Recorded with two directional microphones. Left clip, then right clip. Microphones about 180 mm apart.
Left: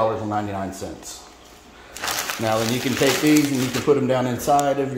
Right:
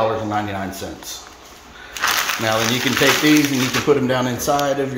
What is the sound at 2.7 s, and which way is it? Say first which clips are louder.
A man's voice: right 4 dB; 15° left (ahead or behind).